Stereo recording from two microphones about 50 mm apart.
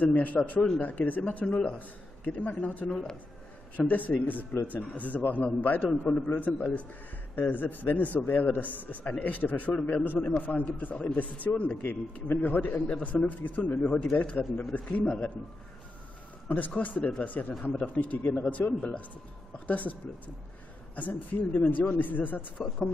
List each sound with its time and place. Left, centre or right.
0.0 s a man's voice: left
2.9 s speech: centre
3.7 s a man's voice: left
15.0 s speech: centre
16.4 s a man's voice: left